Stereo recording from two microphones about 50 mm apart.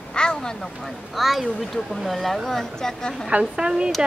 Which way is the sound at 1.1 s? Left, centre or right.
Centre.